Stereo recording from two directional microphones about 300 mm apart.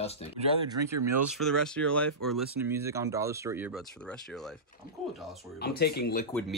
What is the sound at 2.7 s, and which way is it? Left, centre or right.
Speech, centre.